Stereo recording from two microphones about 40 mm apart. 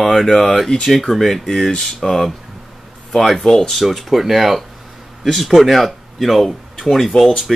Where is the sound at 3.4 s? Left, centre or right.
Centre.